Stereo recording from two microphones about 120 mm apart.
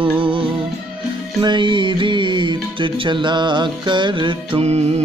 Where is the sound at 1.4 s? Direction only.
40° right (ahead or behind).